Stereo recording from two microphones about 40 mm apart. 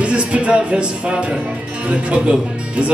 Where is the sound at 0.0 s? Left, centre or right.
Right.